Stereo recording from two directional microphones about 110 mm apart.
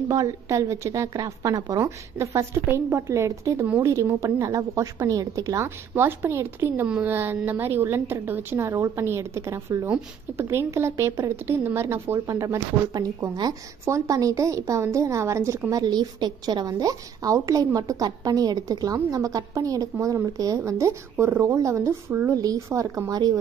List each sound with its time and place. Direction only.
0.1 s speech: 30° right (ahead or behind)
15.7 s a woman's voice: 40° right (ahead or behind)